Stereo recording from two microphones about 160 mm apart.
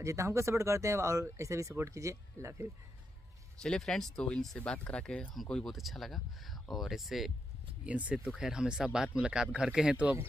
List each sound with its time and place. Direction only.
0.0 s speech: 20° right (ahead or behind)
3.6 s speech: 5° left (ahead or behind)